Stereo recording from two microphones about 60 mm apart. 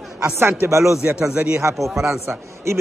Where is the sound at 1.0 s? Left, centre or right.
Right.